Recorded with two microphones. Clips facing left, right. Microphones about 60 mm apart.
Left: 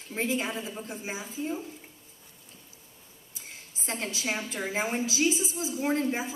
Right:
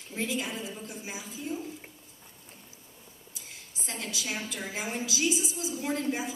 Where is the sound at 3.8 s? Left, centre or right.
Left.